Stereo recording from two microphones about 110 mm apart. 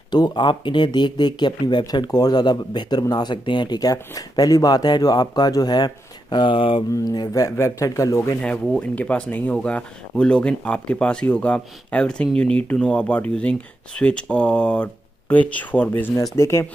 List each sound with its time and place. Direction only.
0.1 s speech: 40° left (ahead or behind)
6.9 s a man's voice: 30° left (ahead or behind)
8.4 s a man's voice: 10° left (ahead or behind)